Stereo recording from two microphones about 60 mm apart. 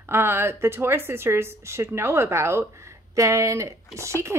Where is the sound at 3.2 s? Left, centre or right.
Right.